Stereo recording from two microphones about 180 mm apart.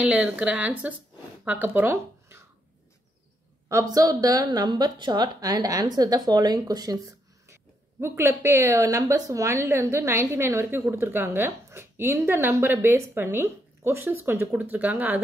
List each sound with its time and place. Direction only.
0.0 s speech: 5° right (ahead or behind)
3.6 s a woman's voice: 15° right (ahead or behind)